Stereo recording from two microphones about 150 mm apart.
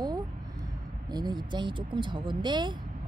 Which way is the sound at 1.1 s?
30° right (ahead or behind).